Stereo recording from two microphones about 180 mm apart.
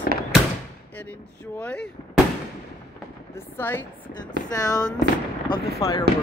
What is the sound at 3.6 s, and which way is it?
Speech, 10° left (ahead or behind).